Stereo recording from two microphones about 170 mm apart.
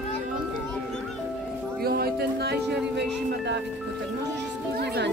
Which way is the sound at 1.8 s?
65° right (ahead or behind).